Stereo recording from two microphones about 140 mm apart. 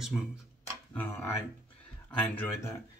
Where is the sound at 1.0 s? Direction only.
15° left (ahead or behind).